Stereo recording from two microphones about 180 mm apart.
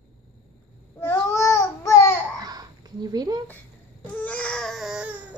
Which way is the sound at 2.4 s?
20° right (ahead or behind).